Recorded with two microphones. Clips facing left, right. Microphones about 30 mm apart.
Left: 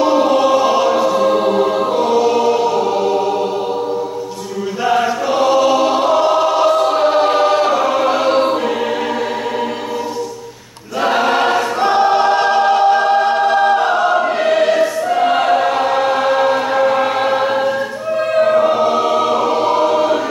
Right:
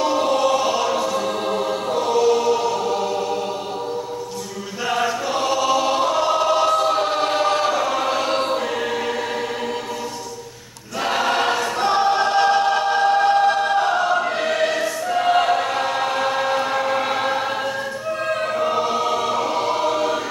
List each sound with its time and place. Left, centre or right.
0.0 s choir: centre
4.8 s choir: centre
11.0 s choir: centre